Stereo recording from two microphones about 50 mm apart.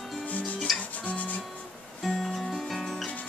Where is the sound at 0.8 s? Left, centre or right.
Left.